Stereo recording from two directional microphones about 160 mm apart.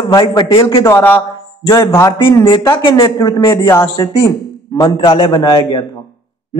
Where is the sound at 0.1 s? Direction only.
25° left (ahead or behind).